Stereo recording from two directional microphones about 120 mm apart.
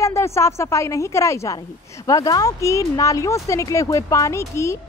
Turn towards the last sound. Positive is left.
turn(degrees=25)  # may be behind; listen again after turning